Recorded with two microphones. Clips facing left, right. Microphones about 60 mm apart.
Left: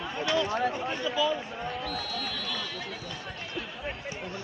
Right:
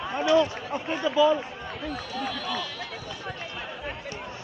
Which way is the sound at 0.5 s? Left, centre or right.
Left.